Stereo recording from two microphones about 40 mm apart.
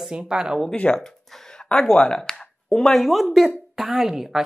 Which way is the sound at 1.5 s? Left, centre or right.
Left.